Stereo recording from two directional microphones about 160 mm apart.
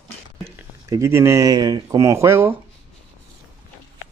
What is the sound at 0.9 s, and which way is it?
Speech, 15° right (ahead or behind).